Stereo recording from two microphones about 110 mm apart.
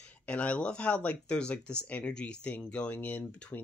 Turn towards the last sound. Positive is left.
turn(degrees=15)  # may be behind; listen again after turning